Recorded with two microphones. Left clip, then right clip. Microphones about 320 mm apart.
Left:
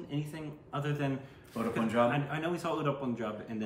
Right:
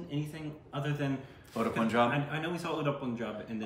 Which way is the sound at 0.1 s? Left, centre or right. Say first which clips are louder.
Right 1 dB; centre.